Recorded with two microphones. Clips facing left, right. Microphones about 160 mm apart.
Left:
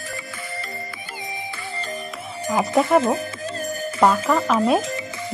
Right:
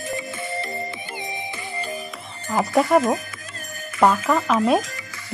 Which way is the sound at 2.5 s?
20° left (ahead or behind).